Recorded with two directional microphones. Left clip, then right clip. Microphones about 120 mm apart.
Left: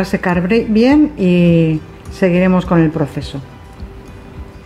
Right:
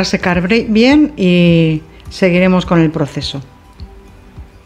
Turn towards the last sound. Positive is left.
turn(degrees=-15)  # may be behind; listen again after turning